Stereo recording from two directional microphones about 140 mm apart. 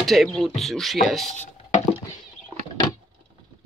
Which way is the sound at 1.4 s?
55° left (ahead or behind).